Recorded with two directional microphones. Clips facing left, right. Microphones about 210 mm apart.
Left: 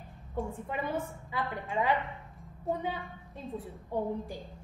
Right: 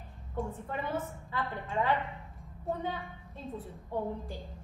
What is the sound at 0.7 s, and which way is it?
Speech, 10° left (ahead or behind).